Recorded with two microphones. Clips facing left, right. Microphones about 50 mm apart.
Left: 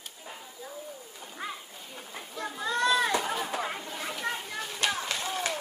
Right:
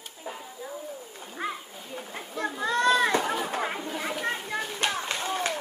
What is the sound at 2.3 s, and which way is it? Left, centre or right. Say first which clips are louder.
Children playing: right 4 dB; right.